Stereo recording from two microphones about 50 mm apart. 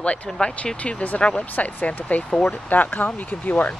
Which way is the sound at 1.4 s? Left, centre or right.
Left.